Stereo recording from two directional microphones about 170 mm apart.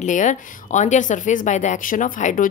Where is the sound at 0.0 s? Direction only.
45° left (ahead or behind).